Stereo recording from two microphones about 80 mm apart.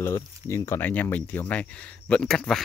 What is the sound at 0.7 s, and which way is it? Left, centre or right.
Speech, left.